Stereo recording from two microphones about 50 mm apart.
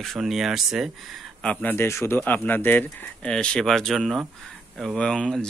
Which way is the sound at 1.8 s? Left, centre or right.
Left.